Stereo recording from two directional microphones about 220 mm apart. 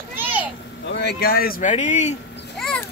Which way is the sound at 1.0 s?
45° left (ahead or behind).